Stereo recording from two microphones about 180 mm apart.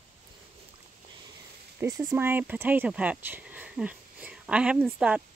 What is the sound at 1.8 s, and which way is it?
Speech, 15° right (ahead or behind).